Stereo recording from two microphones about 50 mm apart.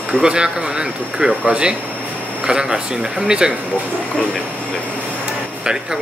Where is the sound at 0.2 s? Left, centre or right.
Centre.